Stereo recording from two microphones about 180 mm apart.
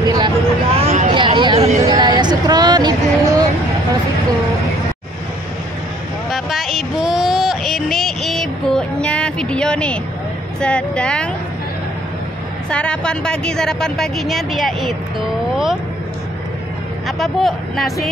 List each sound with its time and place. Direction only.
0.0 s vehicle: 25° right (ahead or behind)
0.7 s a sound: 35° right (ahead or behind)
6.3 s a sound: centre (ahead or behind)
10.6 s a woman's voice: 5° left (ahead or behind)
12.6 s a woman's voice: 5° left (ahead or behind)
17.2 s a woman's voice: centre (ahead or behind)